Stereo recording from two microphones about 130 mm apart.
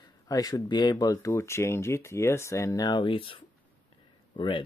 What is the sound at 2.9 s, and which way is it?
Speech, 40° left (ahead or behind).